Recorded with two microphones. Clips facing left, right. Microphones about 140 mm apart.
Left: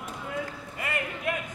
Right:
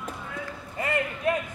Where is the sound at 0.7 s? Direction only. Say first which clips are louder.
Right 6 dB; 30° right (ahead or behind).